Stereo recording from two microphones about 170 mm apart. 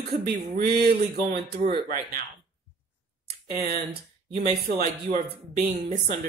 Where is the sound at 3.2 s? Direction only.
65° right (ahead or behind).